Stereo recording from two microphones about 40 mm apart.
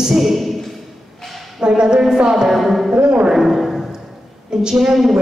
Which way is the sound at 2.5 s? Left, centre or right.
Centre.